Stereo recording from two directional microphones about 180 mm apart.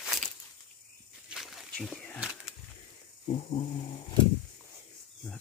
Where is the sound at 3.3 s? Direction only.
35° left (ahead or behind).